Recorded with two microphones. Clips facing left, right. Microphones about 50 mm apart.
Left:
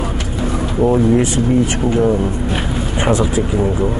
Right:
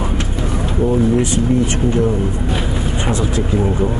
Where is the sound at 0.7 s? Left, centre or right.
Left.